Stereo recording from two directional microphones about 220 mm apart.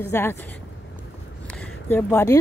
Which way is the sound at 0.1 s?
10° left (ahead or behind).